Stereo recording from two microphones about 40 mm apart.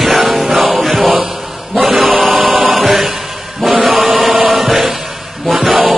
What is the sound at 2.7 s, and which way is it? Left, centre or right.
Music, centre.